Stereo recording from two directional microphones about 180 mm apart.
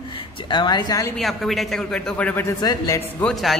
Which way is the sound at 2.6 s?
20° left (ahead or behind).